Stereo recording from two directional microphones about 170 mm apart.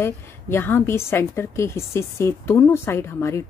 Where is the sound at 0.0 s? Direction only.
15° left (ahead or behind).